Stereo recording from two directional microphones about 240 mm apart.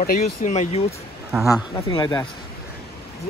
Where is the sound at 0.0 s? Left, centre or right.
Left; by 2.2 s centre.